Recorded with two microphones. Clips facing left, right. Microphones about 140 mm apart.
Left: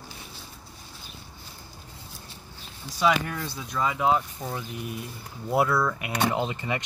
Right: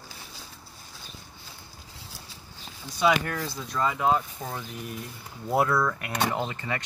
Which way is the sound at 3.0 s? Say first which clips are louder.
Even; centre (ahead or behind).